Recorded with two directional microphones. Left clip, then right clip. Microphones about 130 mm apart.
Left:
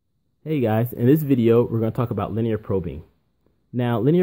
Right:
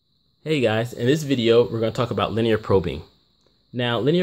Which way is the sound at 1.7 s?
45° left (ahead or behind).